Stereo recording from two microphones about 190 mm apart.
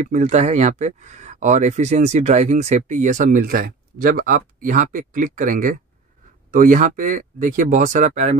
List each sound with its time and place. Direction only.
0.0 s speech: 40° right (ahead or behind)